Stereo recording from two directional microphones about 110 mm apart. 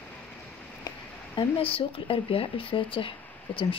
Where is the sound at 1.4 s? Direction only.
55° left (ahead or behind).